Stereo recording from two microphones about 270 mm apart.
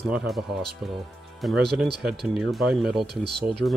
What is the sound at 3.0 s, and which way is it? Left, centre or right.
Speech, right.